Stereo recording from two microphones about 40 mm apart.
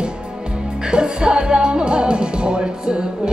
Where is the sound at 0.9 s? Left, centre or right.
Right.